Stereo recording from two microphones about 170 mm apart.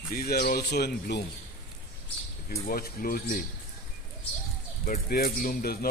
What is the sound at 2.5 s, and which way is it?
Speech, 60° left (ahead or behind).